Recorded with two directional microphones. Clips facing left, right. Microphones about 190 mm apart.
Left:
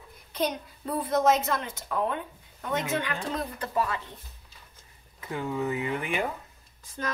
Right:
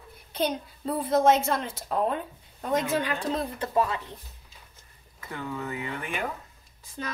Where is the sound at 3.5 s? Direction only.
25° right (ahead or behind).